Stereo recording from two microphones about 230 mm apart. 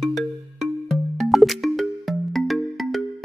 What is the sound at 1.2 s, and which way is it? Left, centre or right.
Music, centre.